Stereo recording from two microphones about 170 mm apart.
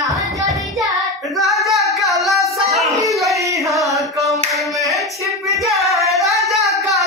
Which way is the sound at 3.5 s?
20° right (ahead or behind).